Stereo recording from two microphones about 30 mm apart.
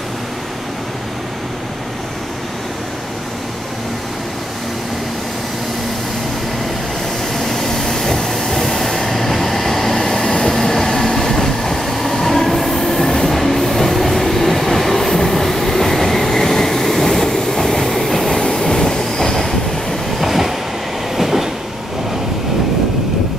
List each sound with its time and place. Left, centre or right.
7.3 s a sound: centre
8.5 s train: centre
9.9 s train: centre
18.4 s train: left
20.2 s train: centre